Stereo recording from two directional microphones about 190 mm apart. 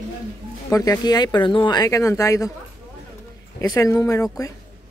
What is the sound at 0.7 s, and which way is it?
Speech, 20° left (ahead or behind).